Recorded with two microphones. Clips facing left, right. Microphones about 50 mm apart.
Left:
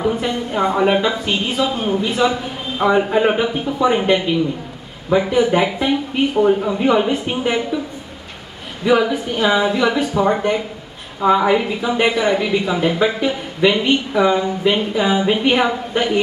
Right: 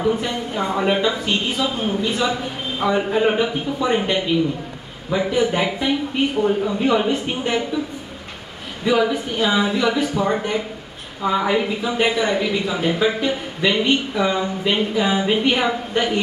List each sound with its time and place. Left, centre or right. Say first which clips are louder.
0.0 s a man's voice: left 1 dB; centre
8.8 s a man's voice: left 3 dB; centre
11.3 s a man's voice: left 3 dB; centre
15.5 s a man's voice: left 3 dB; centre